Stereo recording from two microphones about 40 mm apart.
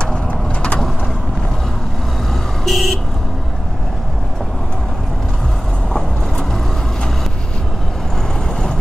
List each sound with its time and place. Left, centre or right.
0.0 s vehicle: left
2.6 s vehicle: centre